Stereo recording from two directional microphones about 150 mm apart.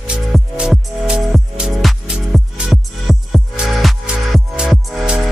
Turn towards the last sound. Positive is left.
turn(degrees=-5)  # may be behind; listen again after turning